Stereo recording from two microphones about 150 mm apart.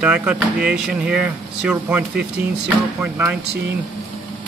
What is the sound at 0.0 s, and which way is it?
Speech, 5° right (ahead or behind).